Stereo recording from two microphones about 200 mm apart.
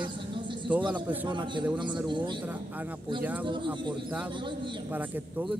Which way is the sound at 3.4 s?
25° right (ahead or behind).